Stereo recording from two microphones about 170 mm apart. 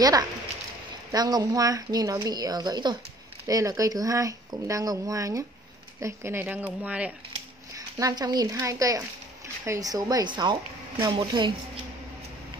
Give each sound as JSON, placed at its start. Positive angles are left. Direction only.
{"t": 1.1, "sound": "speech", "side_deg": -20}
{"t": 7.7, "sound": "speech", "side_deg": -20}